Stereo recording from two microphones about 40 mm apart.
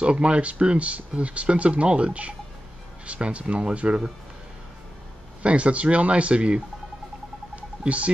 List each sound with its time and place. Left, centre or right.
0.0 s speech: right
5.4 s speech: right
7.5 s a sound: right